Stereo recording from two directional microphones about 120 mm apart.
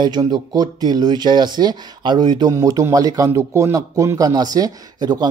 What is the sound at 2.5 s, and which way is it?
Speech, 25° right (ahead or behind).